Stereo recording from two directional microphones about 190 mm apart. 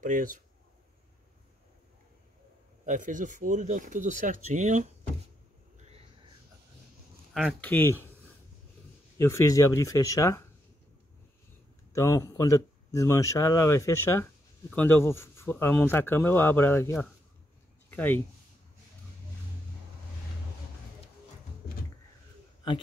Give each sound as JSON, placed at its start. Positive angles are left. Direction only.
{"t": 0.0, "sound": "speech", "side_deg": -45}
{"t": 2.8, "sound": "speech", "side_deg": -40}
{"t": 7.3, "sound": "speech", "side_deg": 5}
{"t": 9.2, "sound": "speech", "side_deg": 15}
{"t": 11.9, "sound": "speech", "side_deg": 15}
{"t": 17.8, "sound": "a sound", "side_deg": 10}